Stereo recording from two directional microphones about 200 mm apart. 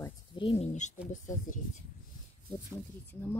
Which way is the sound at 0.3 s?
25° left (ahead or behind).